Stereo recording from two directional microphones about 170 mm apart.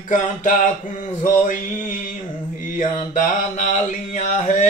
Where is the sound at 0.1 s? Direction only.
50° left (ahead or behind).